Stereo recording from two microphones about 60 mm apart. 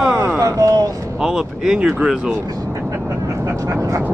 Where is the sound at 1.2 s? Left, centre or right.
Centre.